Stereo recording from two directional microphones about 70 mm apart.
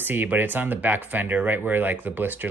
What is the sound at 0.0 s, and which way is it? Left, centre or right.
Speech, right.